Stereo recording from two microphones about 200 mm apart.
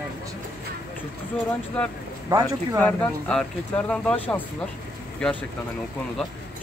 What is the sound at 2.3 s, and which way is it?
Speech, 20° right (ahead or behind).